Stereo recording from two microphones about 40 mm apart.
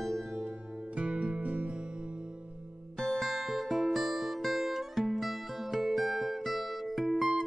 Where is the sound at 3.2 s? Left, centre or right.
Centre.